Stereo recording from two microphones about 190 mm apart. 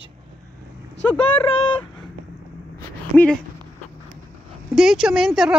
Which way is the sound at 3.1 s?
5° left (ahead or behind).